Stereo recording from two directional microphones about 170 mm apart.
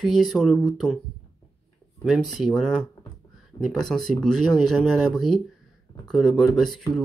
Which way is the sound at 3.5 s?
25° left (ahead or behind).